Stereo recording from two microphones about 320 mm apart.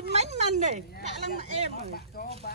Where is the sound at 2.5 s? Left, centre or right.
Left.